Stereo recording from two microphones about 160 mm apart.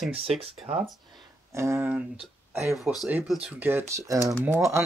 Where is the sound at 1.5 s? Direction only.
15° right (ahead or behind).